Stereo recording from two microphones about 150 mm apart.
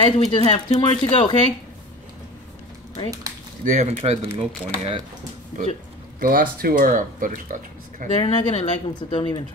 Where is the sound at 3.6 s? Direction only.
50° right (ahead or behind).